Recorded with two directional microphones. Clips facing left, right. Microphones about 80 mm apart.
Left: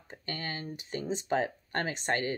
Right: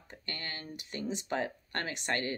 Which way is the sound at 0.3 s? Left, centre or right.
Left.